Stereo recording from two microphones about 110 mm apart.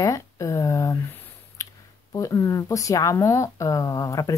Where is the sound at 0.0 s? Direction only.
30° left (ahead or behind).